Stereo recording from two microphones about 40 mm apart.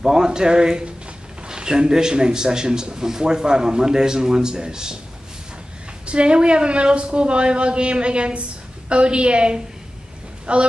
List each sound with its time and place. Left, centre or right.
0.0 s a man's voice: centre
6.0 s a man's voice: right